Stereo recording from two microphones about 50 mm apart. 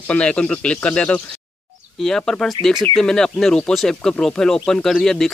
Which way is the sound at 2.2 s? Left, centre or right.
Centre.